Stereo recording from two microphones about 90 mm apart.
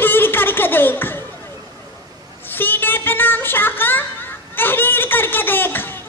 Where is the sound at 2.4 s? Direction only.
20° left (ahead or behind).